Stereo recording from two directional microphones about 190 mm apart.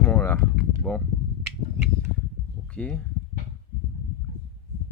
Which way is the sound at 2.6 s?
5° left (ahead or behind).